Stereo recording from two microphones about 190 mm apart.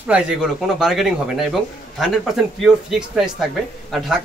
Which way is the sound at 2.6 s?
5° right (ahead or behind).